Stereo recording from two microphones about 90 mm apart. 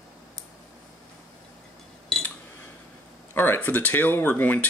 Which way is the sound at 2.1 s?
5° left (ahead or behind).